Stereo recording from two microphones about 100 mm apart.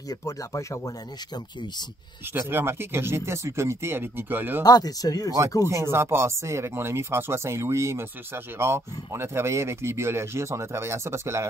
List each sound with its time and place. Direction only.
0.1 s speech: 30° left (ahead or behind)
2.5 s speech: 20° right (ahead or behind)
4.6 s speech: 40° left (ahead or behind)
5.7 s speech: 30° right (ahead or behind)